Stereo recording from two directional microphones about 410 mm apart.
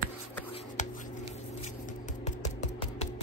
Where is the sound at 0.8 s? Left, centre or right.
Centre.